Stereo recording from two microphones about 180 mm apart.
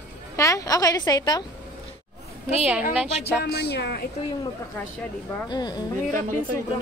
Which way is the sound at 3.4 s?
65° left (ahead or behind).